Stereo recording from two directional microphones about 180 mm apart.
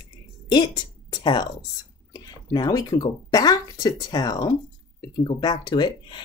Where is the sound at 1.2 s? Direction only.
25° left (ahead or behind).